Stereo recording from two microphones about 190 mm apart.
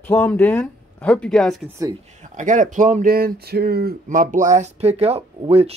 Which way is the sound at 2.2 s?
40° right (ahead or behind).